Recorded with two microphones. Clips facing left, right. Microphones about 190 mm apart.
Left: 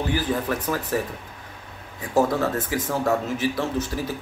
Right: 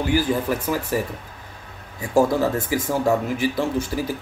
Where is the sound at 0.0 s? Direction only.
10° right (ahead or behind).